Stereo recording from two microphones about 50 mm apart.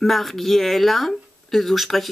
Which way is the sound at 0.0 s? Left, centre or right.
Centre.